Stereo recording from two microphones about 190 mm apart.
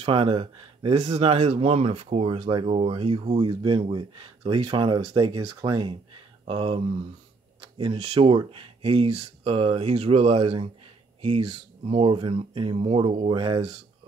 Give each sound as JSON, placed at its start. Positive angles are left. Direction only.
{"t": 0.0, "sound": "speech", "side_deg": -30}